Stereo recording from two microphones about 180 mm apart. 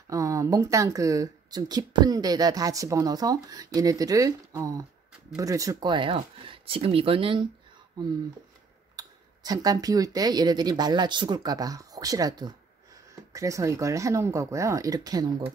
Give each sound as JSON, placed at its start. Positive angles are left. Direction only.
{"t": 0.1, "sound": "speech", "side_deg": -20}
{"t": 8.9, "sound": "speech", "side_deg": -20}